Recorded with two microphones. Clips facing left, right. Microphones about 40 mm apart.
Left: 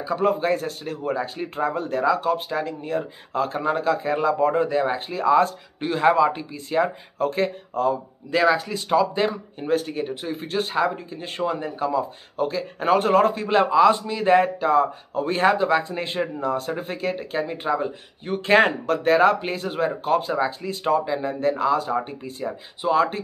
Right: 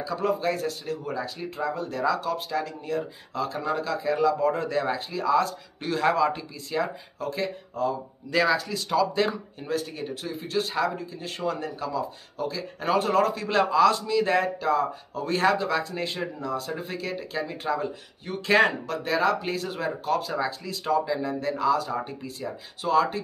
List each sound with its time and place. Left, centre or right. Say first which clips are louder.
0.0 s speech: left 4 dB; left
4.6 s speech: left 5 dB; centre
4.9 s speech: left 6 dB; left
8.3 s speech: left 4 dB; left
9.7 s speech: left 6 dB; left
11.4 s speech: left 5 dB; left